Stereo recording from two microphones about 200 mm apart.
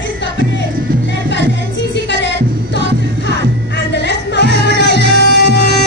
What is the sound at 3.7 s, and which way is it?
Music, 60° left (ahead or behind).